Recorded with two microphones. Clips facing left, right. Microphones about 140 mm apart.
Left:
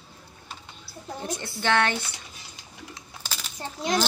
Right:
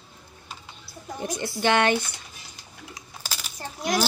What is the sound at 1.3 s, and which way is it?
Speech, 15° right (ahead or behind).